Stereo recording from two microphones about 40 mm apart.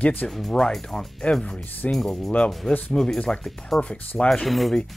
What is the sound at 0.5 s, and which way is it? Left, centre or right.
Speech, centre.